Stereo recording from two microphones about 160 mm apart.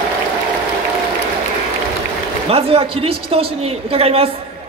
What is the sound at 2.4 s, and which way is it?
A woman's voice, 35° right (ahead or behind).